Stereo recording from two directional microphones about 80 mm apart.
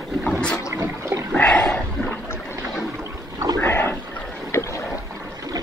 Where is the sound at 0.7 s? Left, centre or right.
Right.